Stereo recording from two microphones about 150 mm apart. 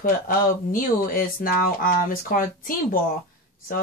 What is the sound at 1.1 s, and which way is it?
Speech, 70° left (ahead or behind).